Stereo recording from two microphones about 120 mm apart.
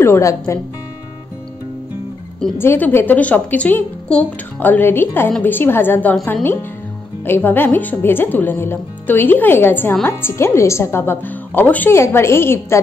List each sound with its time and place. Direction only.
0.0 s a woman's voice: 25° left (ahead or behind)
2.6 s a woman's voice: 20° left (ahead or behind)